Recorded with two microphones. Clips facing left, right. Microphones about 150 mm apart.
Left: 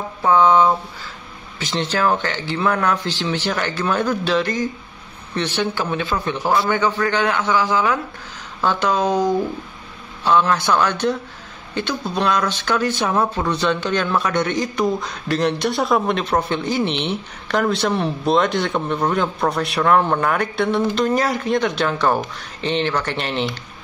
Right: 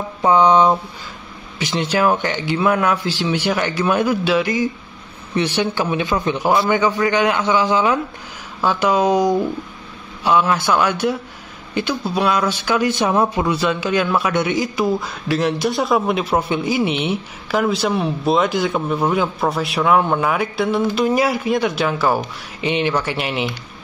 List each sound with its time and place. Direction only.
0.2 s speech: 20° right (ahead or behind)
8.5 s speech: 10° right (ahead or behind)